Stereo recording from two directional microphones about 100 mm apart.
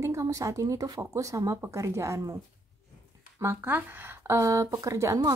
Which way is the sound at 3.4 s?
25° right (ahead or behind).